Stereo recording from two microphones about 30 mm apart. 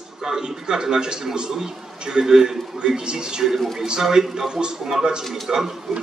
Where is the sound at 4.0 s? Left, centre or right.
Centre.